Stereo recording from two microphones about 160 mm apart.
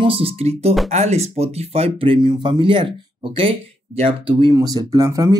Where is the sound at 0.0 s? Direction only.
35° right (ahead or behind).